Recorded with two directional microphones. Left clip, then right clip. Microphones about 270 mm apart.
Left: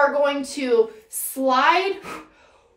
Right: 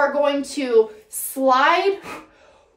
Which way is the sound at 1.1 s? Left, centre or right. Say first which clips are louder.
Right 3 dB; centre.